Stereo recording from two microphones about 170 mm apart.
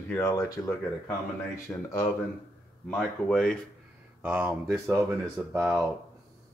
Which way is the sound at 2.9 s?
5° left (ahead or behind).